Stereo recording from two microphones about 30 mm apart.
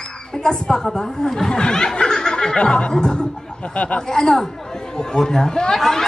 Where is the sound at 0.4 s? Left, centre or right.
Left.